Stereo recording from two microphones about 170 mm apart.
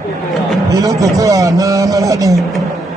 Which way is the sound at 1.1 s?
20° right (ahead or behind).